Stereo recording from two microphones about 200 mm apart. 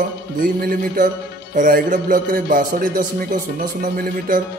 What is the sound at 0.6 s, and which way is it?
A man's voice, 45° right (ahead or behind).